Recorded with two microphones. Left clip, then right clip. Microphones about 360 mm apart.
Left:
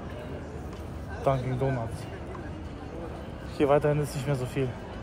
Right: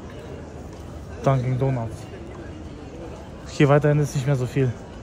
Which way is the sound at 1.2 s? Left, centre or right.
Right.